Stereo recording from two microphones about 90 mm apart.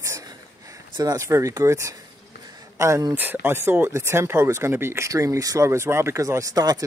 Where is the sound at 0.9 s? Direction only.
50° right (ahead or behind).